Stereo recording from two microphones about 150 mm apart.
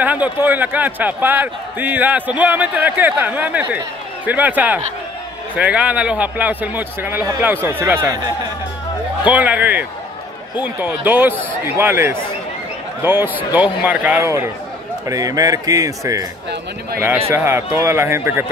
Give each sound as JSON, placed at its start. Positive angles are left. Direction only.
{"t": 0.0, "sound": "speech", "side_deg": -10}
{"t": 9.2, "sound": "speech", "side_deg": -10}
{"t": 17.3, "sound": "speech", "side_deg": -15}